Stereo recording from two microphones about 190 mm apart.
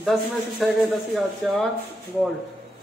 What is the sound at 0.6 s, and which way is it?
Speech, centre (ahead or behind).